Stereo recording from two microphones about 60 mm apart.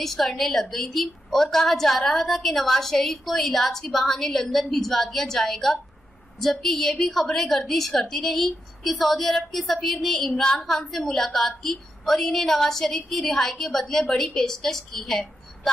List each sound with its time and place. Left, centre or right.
0.0 s a woman's voice: centre